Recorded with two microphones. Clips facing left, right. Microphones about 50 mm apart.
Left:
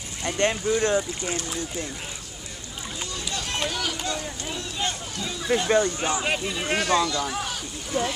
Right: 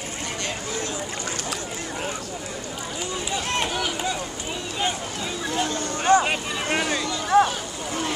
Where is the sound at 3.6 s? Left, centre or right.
Centre.